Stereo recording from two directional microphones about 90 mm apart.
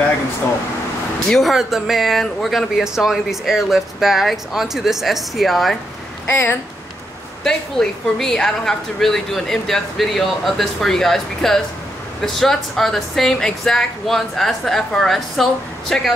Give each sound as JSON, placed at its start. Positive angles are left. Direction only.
{"t": 1.3, "sound": "speech", "side_deg": 0}
{"t": 6.2, "sound": "speech", "side_deg": 30}
{"t": 7.4, "sound": "speech", "side_deg": 5}